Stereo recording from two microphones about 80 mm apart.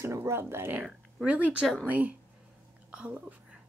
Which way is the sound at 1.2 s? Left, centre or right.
Centre.